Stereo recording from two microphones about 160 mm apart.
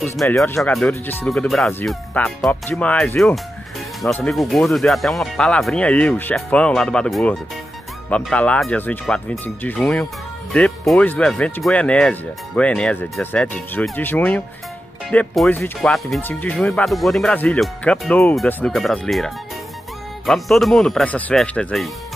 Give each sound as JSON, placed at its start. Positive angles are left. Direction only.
{"t": 0.2, "sound": "speech", "side_deg": 0}